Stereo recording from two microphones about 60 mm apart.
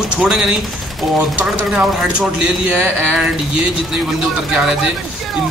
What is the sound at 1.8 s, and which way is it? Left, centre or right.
Speech, centre.